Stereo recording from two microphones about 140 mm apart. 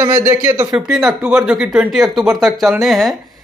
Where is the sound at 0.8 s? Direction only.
5° right (ahead or behind).